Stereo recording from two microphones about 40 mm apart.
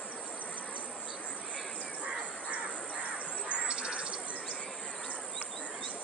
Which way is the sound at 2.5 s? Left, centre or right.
Right.